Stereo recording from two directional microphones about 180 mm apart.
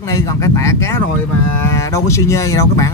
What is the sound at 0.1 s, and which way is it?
Speech, 15° left (ahead or behind).